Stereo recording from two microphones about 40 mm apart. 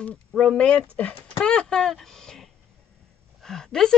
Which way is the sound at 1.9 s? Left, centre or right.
Centre.